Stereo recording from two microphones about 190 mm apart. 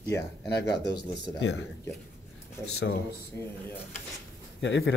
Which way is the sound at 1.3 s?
75° left (ahead or behind).